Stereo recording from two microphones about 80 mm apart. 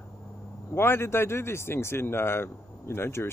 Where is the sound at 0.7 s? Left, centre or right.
Left.